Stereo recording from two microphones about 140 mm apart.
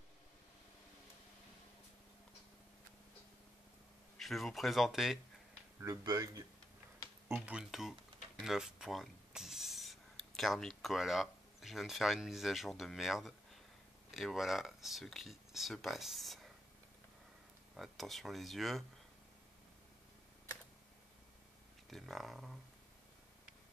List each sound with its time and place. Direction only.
4.2 s speech: centre (ahead or behind)
6.0 s speech: 25° right (ahead or behind)
7.3 s speech: 5° right (ahead or behind)
17.7 s speech: centre (ahead or behind)
21.9 s speech: centre (ahead or behind)